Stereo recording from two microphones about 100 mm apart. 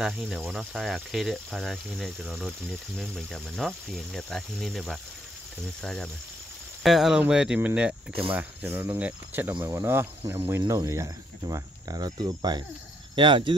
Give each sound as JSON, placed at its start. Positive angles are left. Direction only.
{"t": 0.0, "sound": "speech", "side_deg": -5}